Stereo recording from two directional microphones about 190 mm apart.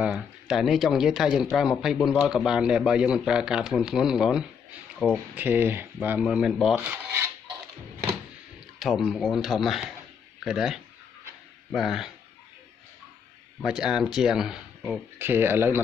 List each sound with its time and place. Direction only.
0.0 s speech: 5° right (ahead or behind)
8.7 s speech: centre (ahead or behind)
13.7 s speech: 5° right (ahead or behind)